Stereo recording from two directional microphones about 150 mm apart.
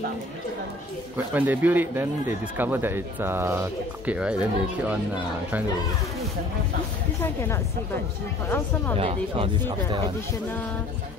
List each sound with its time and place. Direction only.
1.1 s speech: 10° right (ahead or behind)
7.2 s a woman's voice: 15° left (ahead or behind)
8.9 s speech: 40° right (ahead or behind)